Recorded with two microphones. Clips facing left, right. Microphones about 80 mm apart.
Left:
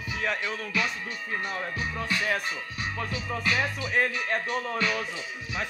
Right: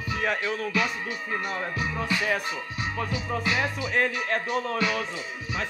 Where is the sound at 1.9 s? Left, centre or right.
Centre.